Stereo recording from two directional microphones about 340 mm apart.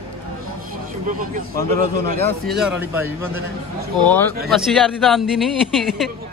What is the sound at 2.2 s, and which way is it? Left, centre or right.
A man's voice, centre.